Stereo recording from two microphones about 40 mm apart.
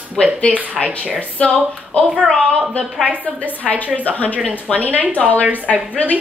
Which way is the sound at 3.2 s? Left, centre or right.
Left.